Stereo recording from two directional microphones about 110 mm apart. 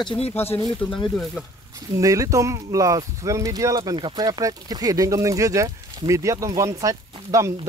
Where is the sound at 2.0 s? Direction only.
30° right (ahead or behind).